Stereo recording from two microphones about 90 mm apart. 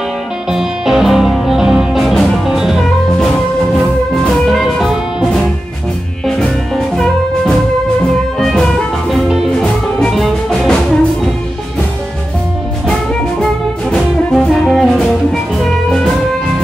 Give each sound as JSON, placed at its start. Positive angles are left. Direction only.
{"t": 0.5, "sound": "music", "side_deg": -5}
{"t": 12.8, "sound": "music", "side_deg": 5}